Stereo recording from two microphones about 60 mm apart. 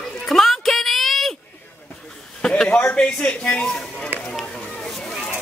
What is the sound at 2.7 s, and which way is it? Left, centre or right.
Speech, left.